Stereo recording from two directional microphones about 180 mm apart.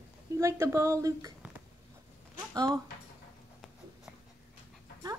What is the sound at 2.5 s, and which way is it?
Speech, 20° right (ahead or behind).